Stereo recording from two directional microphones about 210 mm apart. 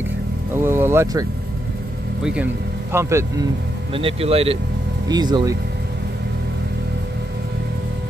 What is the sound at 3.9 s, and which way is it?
Speech, 25° right (ahead or behind).